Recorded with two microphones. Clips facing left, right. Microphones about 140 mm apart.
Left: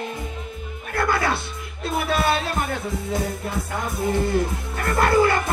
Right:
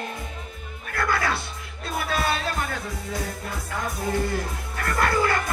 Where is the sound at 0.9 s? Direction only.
25° left (ahead or behind).